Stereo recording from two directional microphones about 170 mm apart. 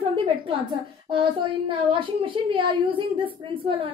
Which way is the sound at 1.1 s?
30° right (ahead or behind).